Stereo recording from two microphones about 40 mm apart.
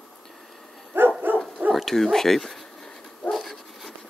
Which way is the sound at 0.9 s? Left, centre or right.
Right.